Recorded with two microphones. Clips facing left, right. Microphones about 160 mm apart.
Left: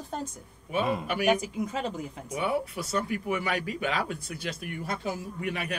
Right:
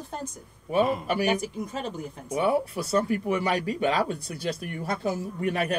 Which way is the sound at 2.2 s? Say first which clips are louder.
Right 5 dB; 35° right (ahead or behind).